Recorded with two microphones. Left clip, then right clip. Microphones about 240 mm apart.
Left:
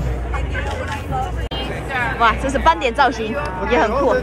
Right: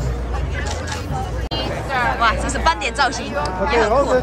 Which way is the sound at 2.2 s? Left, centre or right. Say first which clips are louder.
Left 6 dB; centre.